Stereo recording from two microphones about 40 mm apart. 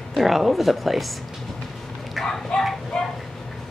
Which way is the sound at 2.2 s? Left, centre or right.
Centre.